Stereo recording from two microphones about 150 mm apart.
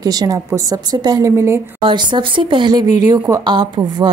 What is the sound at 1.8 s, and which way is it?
Speech, 30° right (ahead or behind).